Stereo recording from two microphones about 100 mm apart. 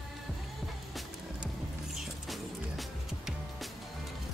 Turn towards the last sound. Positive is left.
turn(degrees=0)  # may be behind; listen again after turning